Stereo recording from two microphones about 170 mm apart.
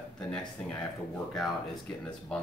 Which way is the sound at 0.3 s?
5° left (ahead or behind).